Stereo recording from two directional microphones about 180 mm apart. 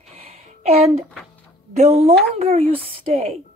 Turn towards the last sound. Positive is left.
turn(degrees=-30)  # may be behind; listen again after turning